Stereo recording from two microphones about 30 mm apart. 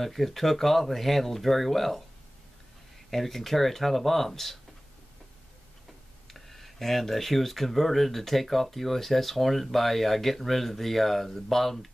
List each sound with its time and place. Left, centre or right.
0.0 s speech: centre
3.1 s speech: centre
6.3 s speech: centre